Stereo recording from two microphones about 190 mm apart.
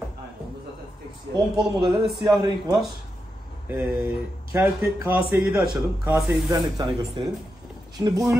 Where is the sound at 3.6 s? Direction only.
5° right (ahead or behind).